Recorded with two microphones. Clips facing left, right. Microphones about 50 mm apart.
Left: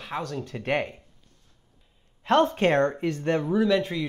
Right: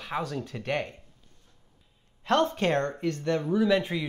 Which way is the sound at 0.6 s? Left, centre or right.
Centre.